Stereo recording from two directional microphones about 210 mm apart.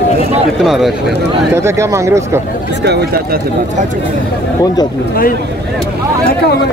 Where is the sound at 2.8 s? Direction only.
50° right (ahead or behind).